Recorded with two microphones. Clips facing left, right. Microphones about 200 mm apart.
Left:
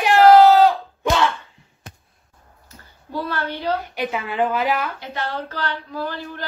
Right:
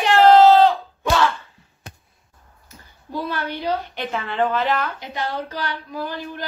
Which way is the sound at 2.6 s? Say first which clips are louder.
Right 1 dB; 15° right (ahead or behind).